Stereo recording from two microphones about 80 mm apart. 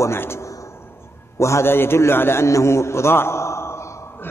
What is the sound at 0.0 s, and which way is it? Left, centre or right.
A man's voice, left.